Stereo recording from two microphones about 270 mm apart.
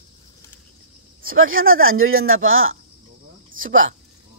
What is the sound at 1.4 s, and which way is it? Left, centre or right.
Speech, right.